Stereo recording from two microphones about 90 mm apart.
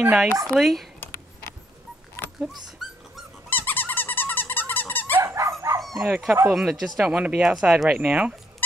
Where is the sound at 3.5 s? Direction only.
20° left (ahead or behind).